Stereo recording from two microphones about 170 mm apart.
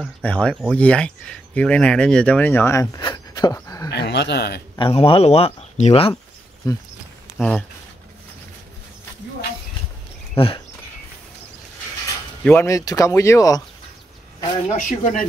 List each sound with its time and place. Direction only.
0.2 s speech: 5° left (ahead or behind)
3.9 s speech: 80° left
4.7 s speech: 30° left (ahead or behind)
6.6 s speech: 20° left (ahead or behind)
7.3 s speech: centre (ahead or behind)
10.3 s speech: 30° left (ahead or behind)
12.4 s speech: 15° left (ahead or behind)
14.7 s speech: 50° left (ahead or behind)